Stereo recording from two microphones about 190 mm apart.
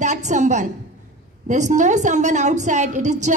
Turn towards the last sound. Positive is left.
turn(degrees=-40)  # may be behind; listen again after turning